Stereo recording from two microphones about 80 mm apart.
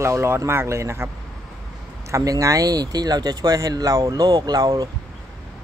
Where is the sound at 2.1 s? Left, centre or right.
Right.